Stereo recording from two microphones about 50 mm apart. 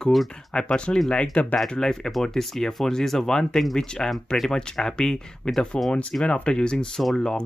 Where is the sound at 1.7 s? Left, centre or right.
Centre.